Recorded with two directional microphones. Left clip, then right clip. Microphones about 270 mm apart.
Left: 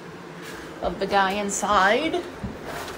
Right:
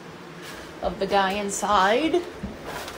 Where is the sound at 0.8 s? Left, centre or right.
Centre.